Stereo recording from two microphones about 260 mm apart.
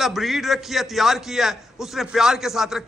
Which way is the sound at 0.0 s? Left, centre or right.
Centre.